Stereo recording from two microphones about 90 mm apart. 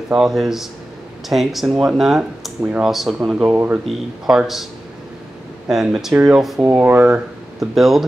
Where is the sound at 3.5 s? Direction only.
20° right (ahead or behind).